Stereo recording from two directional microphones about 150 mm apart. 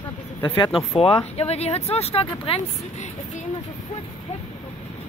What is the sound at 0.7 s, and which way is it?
Speech, 40° left (ahead or behind).